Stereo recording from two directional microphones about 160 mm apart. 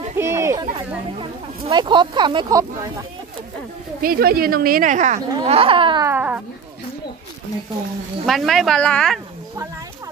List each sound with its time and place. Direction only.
0.2 s a sound: 15° right (ahead or behind)
1.7 s speech: 30° right (ahead or behind)
4.0 s a woman's voice: 70° right (ahead or behind); by 5.2 s 50° right (ahead or behind)
5.3 s speech: 35° right (ahead or behind)
6.0 s speech: 10° right (ahead or behind)
8.3 s speech: centre (ahead or behind)